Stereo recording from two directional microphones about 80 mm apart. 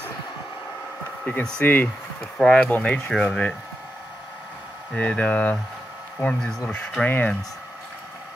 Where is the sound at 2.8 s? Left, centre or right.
Centre.